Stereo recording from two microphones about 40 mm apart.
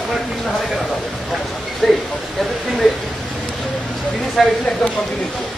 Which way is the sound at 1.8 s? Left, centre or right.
Centre.